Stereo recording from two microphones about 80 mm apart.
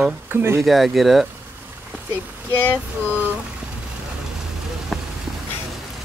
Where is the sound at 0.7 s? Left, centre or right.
Centre.